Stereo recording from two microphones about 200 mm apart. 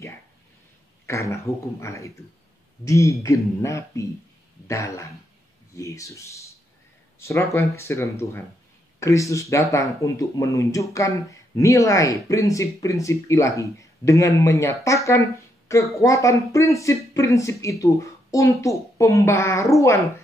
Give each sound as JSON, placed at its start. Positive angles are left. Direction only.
{"t": 1.0, "sound": "speech", "side_deg": 15}